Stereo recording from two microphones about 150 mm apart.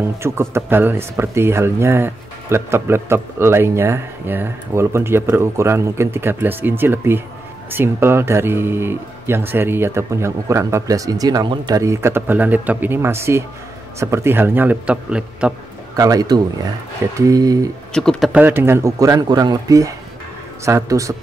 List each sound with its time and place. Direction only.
0.2 s speech: 15° right (ahead or behind)
16.0 s speech: 25° right (ahead or behind)
17.9 s speech: 5° left (ahead or behind)
18.3 s speech: 15° right (ahead or behind)